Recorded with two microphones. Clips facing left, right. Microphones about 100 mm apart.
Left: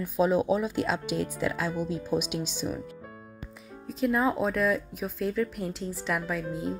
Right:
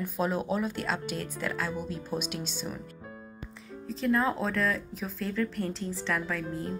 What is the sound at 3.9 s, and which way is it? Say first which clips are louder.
Speech: left 2 dB; 5° left (ahead or behind).